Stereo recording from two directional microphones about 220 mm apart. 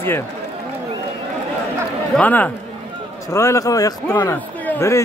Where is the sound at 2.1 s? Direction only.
5° left (ahead or behind).